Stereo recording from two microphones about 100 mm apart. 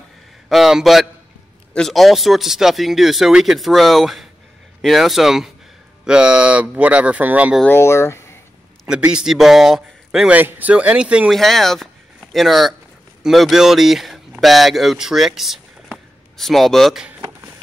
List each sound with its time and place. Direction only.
0.5 s a man's voice: 5° right (ahead or behind)
7.6 s speech: 25° left (ahead or behind)
8.8 s a man's voice: 10° right (ahead or behind)
10.3 s speech: 15° right (ahead or behind)
11.3 s speech: centre (ahead or behind)